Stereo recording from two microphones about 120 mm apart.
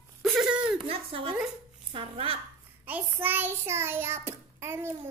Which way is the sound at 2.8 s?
15° right (ahead or behind).